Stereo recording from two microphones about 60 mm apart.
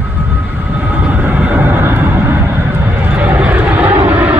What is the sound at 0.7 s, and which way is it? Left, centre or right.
Vehicle, right.